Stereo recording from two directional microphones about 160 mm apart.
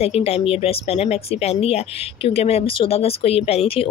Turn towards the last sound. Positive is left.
turn(degrees=40)  # may be behind; listen again after turning